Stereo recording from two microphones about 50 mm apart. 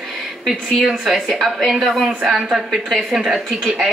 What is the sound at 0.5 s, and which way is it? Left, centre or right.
A woman's voice, centre.